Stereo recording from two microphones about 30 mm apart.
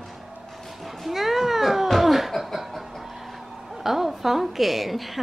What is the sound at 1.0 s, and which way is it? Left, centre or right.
Cat, centre.